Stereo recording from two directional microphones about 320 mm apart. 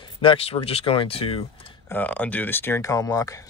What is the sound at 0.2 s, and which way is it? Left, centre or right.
Speech, centre.